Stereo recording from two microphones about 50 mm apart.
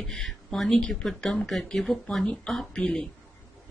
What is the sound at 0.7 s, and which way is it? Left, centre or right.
Speech, left.